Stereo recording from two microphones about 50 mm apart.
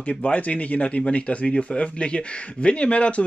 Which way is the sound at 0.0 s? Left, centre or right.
Left.